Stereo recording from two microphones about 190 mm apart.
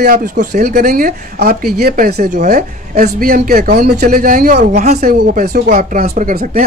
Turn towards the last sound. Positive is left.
turn(degrees=-45)  # may be behind; listen again after turning